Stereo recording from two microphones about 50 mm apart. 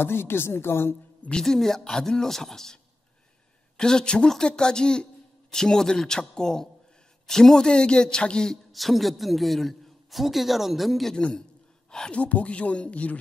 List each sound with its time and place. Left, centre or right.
0.0 s speech: left
1.4 s speech: centre
8.7 s a man's voice: centre
12.1 s speech: left